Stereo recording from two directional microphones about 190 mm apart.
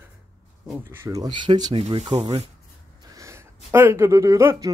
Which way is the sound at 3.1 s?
15° right (ahead or behind).